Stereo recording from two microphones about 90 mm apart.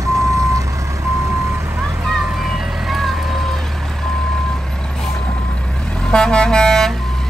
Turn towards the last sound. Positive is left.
turn(degrees=5)  # may be behind; listen again after turning